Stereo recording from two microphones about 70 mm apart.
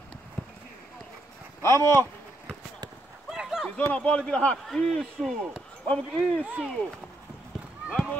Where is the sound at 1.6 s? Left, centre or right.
Left.